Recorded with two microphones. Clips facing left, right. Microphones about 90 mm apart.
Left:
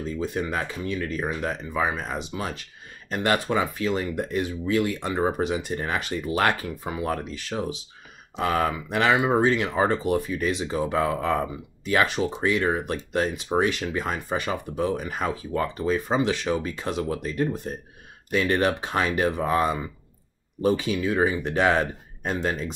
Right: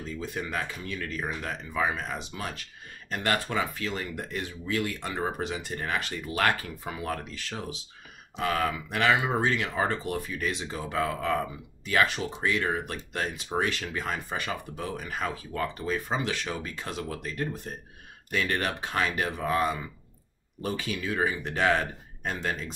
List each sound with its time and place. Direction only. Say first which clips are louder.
0.2 s speech: left 4 dB; 25° left (ahead or behind)